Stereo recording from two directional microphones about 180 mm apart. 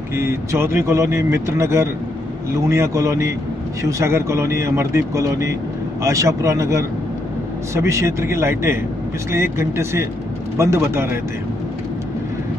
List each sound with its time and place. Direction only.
0.1 s a man's voice: 15° right (ahead or behind)